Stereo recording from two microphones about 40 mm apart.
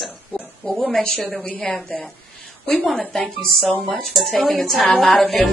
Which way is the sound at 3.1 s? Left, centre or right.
Centre.